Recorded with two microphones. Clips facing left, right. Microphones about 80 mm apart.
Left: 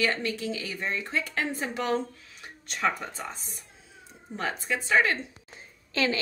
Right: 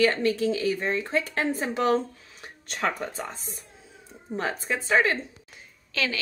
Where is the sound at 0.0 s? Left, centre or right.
Right.